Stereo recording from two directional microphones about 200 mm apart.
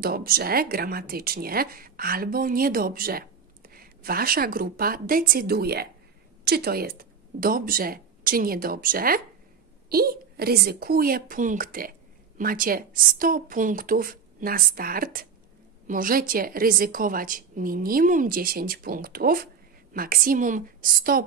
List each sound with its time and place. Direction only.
0.0 s speech: 50° right (ahead or behind)